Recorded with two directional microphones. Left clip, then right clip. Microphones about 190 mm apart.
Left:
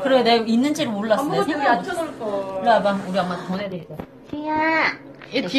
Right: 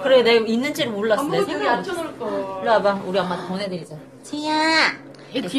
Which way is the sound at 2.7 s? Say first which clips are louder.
Even; 30° right (ahead or behind).